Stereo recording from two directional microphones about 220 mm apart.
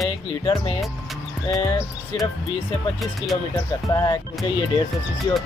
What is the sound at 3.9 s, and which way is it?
Speech, 15° left (ahead or behind).